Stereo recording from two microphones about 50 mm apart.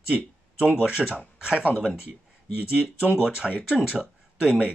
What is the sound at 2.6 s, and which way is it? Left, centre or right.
Speech, right.